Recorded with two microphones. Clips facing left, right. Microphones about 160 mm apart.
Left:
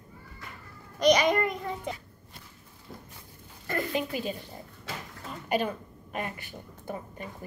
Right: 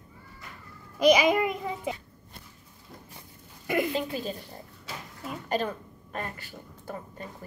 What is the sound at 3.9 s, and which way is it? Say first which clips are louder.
Speech: even; 15° left (ahead or behind).